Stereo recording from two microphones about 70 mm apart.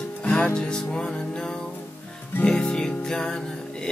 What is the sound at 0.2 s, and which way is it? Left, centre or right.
Music, centre.